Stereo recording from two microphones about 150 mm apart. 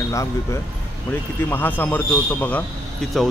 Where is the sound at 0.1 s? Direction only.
20° left (ahead or behind).